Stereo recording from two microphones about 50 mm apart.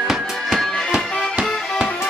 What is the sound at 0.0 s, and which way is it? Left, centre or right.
Music, centre.